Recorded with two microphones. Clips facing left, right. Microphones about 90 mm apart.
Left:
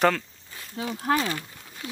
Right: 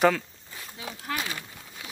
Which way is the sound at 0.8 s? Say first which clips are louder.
Left 8 dB; 45° left (ahead or behind).